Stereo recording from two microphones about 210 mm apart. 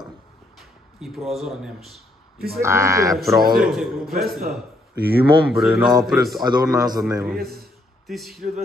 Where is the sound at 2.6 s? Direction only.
15° right (ahead or behind).